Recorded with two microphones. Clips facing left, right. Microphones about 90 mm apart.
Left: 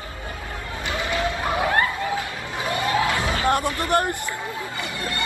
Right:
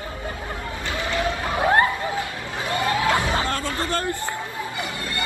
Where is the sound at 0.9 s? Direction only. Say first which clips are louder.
Left 1 dB; 20° left (ahead or behind).